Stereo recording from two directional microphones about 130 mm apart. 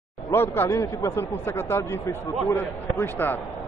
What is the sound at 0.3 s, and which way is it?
Speech, 15° left (ahead or behind).